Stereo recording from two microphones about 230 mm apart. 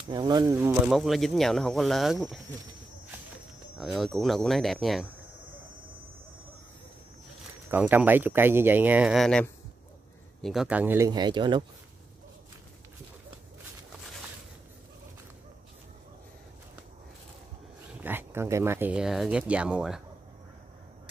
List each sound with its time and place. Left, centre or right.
0.1 s speech: centre
0.9 s speech: centre
3.7 s speech: centre
7.7 s speech: centre
18.0 s speech: centre